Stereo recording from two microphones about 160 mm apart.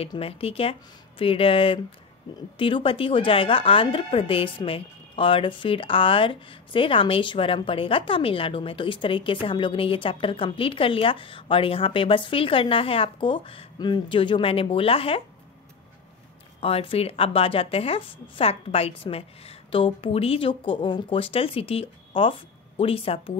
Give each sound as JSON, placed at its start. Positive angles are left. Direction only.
{"t": 0.1, "sound": "speech", "side_deg": 35}
{"t": 16.6, "sound": "speech", "side_deg": 35}